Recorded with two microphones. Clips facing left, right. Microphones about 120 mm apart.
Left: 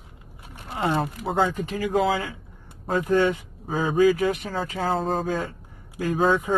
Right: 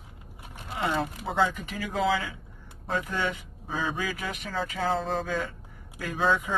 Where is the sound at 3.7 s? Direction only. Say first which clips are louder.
Left 11 dB; 40° left (ahead or behind).